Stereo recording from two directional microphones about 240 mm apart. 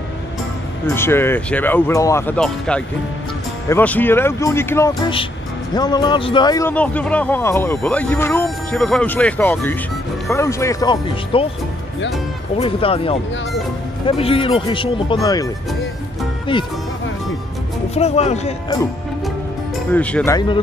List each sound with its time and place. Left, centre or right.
0.9 s speech: centre
12.5 s speech: left
16.5 s speech: left
17.9 s speech: left
19.9 s speech: centre
20.3 s speech: centre